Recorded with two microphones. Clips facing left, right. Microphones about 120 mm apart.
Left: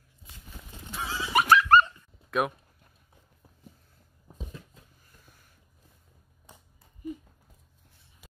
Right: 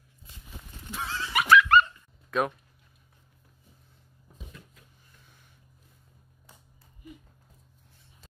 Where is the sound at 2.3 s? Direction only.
5° left (ahead or behind).